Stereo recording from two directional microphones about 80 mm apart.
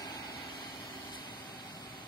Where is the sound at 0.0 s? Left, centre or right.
Left.